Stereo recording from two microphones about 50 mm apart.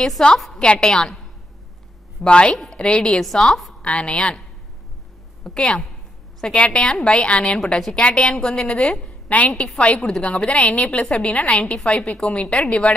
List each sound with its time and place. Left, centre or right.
0.2 s a woman's voice: centre
2.2 s a woman's voice: centre
3.2 s a woman's voice: centre
3.8 s a woman's voice: left
5.4 s a woman's voice: centre
9.0 s a woman's voice: left
9.8 s a woman's voice: centre
10.3 s a woman's voice: left